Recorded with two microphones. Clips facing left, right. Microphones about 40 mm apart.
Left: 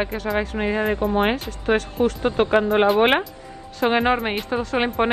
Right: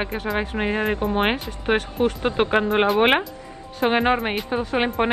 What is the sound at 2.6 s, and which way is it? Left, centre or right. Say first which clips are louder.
A woman's voice: left 1 dB; centre.